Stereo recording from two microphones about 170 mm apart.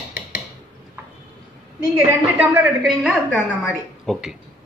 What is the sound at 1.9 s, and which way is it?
Speech, 15° right (ahead or behind).